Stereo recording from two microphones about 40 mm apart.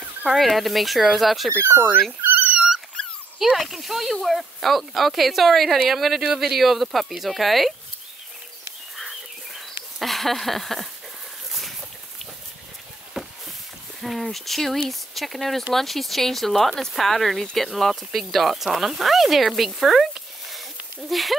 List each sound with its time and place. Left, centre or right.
0.3 s speech: centre
1.6 s speech: right
2.2 s dog: right
3.5 s speech: centre
8.9 s dog: centre
9.9 s a sound: centre
13.2 s a sound: centre
14.0 s speech: centre